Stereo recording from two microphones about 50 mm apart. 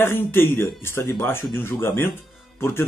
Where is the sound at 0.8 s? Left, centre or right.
Left.